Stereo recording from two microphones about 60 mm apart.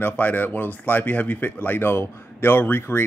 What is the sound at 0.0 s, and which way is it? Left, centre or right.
Speech, left.